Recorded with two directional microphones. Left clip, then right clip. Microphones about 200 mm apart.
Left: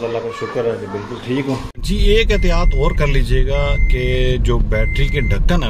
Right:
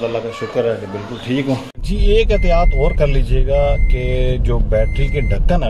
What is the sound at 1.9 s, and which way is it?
Speech, centre (ahead or behind).